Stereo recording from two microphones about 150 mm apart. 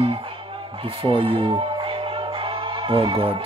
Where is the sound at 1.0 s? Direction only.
35° right (ahead or behind).